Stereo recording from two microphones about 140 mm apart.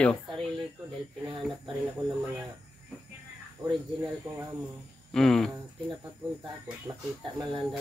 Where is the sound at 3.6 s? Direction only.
30° right (ahead or behind).